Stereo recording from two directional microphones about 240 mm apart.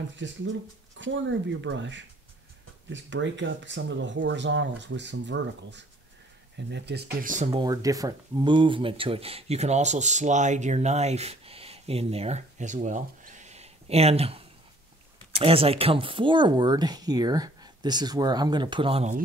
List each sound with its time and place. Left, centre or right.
0.2 s speech: right
7.6 s speech: centre